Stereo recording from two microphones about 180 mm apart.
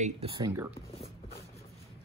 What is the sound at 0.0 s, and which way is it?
Speech, 35° right (ahead or behind).